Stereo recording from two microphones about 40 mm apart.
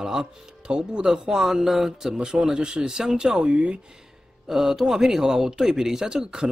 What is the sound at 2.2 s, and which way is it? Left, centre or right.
Speech, centre.